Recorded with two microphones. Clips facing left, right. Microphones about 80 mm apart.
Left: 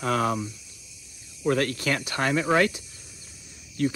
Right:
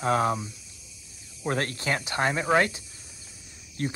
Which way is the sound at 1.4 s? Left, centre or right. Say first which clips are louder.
Left 4 dB; right.